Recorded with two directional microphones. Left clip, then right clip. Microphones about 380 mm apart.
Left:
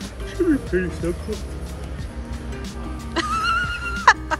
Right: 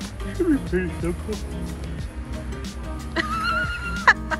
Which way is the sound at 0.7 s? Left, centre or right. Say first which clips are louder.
Left 2 dB; centre.